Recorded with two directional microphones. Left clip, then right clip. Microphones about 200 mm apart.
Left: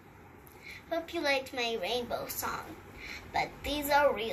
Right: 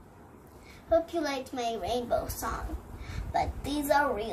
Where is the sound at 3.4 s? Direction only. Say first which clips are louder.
Right 2 dB; 15° right (ahead or behind).